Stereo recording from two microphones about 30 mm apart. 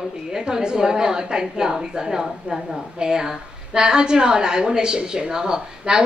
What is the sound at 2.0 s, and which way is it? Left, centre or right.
Speech, centre.